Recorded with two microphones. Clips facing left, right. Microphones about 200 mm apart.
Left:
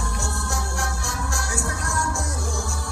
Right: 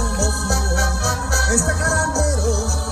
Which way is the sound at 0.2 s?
70° right (ahead or behind).